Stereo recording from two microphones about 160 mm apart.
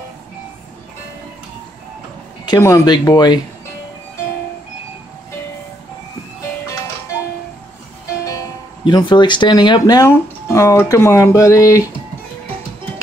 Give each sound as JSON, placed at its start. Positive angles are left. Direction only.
{"t": 2.4, "sound": "speech", "side_deg": 25}
{"t": 8.8, "sound": "speech", "side_deg": 30}